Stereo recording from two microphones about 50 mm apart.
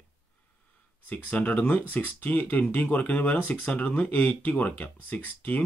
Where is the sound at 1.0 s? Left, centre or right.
Left.